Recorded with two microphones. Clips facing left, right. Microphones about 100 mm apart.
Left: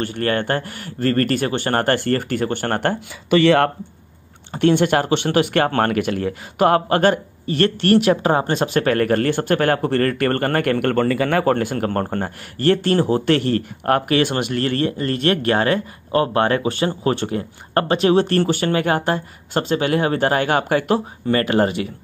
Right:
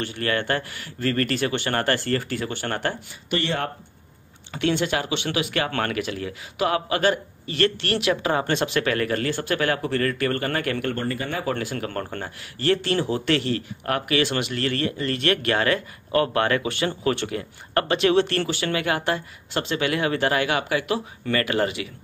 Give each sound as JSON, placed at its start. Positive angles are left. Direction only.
{"t": 0.0, "sound": "speech", "side_deg": 45}
{"t": 3.4, "sound": "speech", "side_deg": 70}
{"t": 4.5, "sound": "speech", "side_deg": 45}
{"t": 11.4, "sound": "speech", "side_deg": 50}